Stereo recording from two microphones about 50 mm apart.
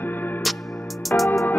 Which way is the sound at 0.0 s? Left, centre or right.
Left.